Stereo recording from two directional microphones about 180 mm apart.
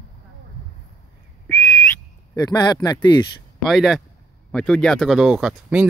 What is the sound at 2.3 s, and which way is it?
Speech, 20° left (ahead or behind).